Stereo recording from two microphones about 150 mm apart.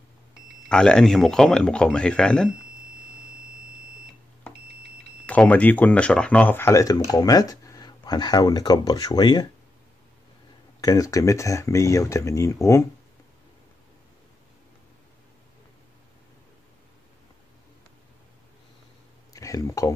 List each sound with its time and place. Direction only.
0.7 s speech: 5° left (ahead or behind)
5.2 s speech: 10° left (ahead or behind); by 9.5 s 30° left (ahead or behind)
10.8 s speech: 25° left (ahead or behind)
19.3 s speech: 20° left (ahead or behind)